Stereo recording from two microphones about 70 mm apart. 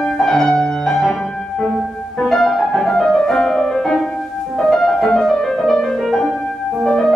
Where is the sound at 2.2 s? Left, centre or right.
Centre.